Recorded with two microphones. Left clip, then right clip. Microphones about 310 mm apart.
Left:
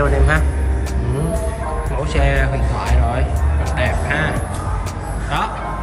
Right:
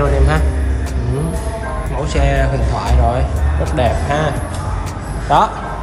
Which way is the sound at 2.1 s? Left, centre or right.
Centre.